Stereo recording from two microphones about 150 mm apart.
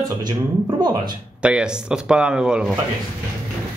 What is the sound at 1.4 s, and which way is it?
Speech, 5° right (ahead or behind).